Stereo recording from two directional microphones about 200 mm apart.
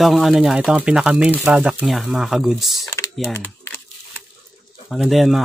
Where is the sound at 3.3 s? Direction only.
15° left (ahead or behind).